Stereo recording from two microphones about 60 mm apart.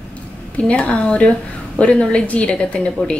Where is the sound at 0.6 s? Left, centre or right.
Left.